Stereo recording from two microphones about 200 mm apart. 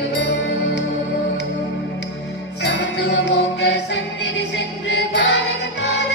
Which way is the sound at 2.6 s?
60° left (ahead or behind).